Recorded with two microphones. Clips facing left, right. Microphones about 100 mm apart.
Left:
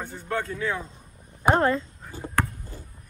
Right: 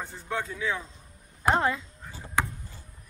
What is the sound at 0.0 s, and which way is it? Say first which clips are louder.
Speech: left 3 dB; centre (ahead or behind).